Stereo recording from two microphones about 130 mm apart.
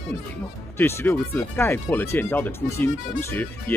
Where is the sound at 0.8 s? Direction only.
15° left (ahead or behind).